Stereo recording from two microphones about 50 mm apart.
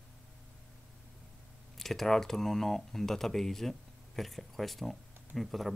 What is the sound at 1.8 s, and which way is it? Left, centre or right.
Speech, centre.